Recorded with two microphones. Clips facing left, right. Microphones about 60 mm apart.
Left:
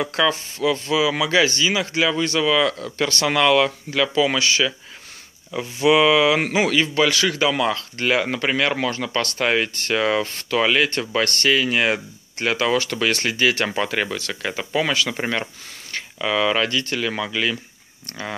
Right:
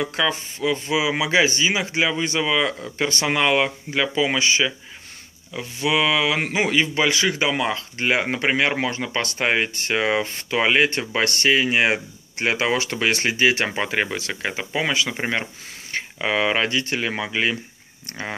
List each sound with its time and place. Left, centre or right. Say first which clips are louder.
0.0 s speech: left 2 dB; centre
5.5 s speech: left 6 dB; centre
15.9 s speech: even; right